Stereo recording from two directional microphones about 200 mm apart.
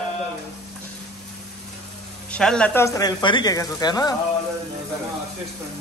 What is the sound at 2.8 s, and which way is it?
Speech, 20° left (ahead or behind).